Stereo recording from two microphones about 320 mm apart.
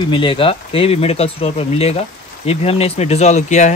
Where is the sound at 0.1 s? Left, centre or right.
Centre.